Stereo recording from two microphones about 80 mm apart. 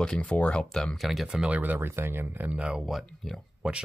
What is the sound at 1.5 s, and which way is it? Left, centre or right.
Speech, right.